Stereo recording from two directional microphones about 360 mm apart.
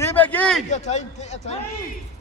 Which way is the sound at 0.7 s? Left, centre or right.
Centre.